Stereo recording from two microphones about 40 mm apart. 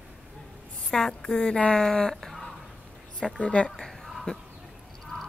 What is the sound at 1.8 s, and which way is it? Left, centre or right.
Speech, centre.